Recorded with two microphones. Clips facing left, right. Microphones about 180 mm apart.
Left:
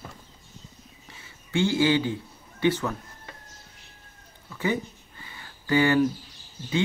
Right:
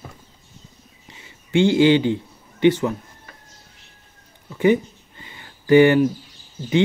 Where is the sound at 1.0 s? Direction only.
15° right (ahead or behind).